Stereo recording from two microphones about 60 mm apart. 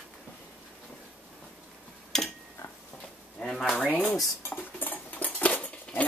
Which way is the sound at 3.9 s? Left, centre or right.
Left.